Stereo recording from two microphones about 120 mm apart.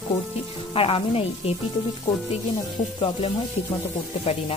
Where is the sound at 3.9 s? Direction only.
60° left (ahead or behind).